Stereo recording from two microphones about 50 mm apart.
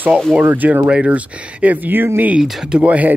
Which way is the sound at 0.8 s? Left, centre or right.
Right.